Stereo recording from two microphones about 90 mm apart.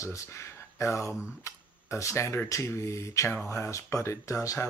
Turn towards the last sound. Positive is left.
turn(degrees=35)  # may be behind; listen again after turning